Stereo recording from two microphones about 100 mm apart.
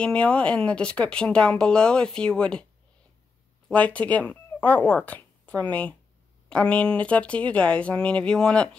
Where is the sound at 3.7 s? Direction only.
15° left (ahead or behind).